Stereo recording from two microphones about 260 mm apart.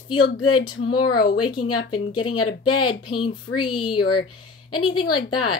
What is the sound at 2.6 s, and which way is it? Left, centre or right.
Speech, centre.